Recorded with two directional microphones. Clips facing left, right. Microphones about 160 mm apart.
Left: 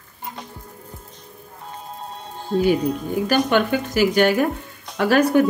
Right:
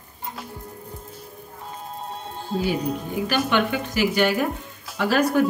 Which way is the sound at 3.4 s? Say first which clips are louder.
Left 3 dB; 45° left (ahead or behind).